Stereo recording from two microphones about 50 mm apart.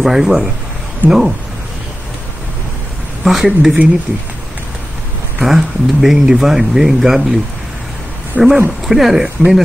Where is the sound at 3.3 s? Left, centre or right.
Centre.